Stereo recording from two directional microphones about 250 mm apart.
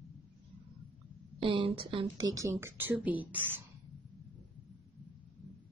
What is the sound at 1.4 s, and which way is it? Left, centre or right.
Speech, centre.